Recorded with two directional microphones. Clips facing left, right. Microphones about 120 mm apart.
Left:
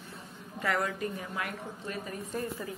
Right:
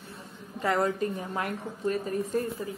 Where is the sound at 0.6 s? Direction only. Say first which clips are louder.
Right 5 dB; 30° right (ahead or behind).